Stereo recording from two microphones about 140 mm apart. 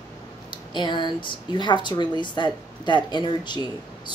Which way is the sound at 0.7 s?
35° left (ahead or behind).